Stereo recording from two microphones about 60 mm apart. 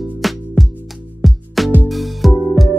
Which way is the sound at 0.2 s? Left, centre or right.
Centre.